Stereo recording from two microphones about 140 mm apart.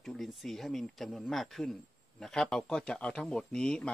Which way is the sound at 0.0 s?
Centre (ahead or behind).